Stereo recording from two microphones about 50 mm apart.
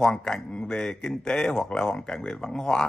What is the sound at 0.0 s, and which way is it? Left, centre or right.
Speech, centre.